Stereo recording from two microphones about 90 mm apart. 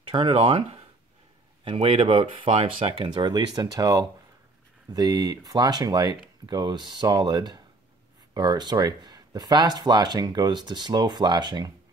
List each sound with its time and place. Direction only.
0.1 s speech: 80° right
3.2 s speech: 55° right (ahead or behind)